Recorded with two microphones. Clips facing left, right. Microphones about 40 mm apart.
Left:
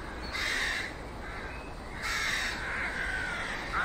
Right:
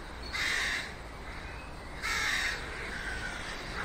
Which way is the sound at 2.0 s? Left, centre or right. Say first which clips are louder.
Even; centre.